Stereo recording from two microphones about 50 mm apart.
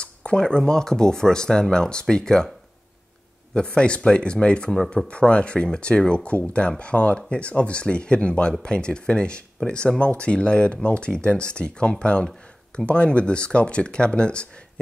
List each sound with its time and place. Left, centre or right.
0.0 s speech: left
3.5 s speech: centre